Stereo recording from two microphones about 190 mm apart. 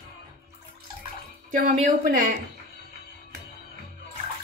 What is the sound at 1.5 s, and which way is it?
Speech, 45° right (ahead or behind).